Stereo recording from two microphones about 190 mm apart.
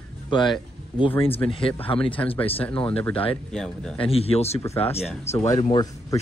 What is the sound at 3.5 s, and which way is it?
Speech, 5° left (ahead or behind).